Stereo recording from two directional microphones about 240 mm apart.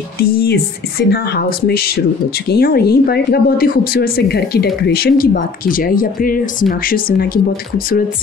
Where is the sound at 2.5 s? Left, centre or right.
Left.